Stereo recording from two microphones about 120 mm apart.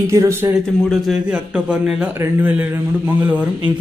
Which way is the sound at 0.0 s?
25° right (ahead or behind).